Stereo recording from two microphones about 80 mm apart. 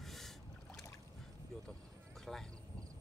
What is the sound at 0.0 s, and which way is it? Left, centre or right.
Rowboat, centre.